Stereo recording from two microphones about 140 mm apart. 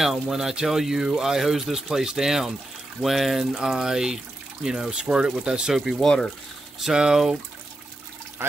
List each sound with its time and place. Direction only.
0.0 s speech: centre (ahead or behind)
8.4 s speech: 15° right (ahead or behind)